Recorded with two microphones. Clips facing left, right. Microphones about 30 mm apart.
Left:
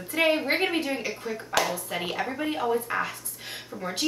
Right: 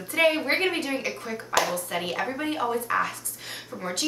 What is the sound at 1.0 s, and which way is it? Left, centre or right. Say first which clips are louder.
Speech: even; right.